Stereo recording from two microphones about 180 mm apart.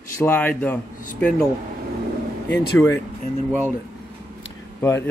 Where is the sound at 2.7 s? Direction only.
15° left (ahead or behind).